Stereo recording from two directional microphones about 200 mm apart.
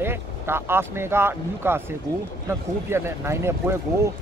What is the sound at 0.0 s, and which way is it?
Speech, 10° right (ahead or behind).